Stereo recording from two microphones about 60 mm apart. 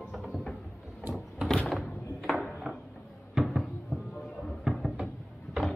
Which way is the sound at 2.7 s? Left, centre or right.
Centre.